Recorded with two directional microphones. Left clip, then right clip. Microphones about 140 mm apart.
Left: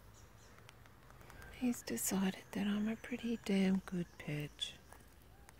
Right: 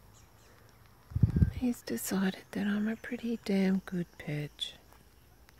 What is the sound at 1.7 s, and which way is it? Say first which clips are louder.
Speech: even; 40° right (ahead or behind).